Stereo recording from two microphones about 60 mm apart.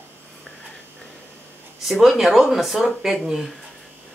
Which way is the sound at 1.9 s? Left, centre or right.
Centre.